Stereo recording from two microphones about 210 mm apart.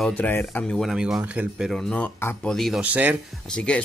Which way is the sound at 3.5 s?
5° left (ahead or behind).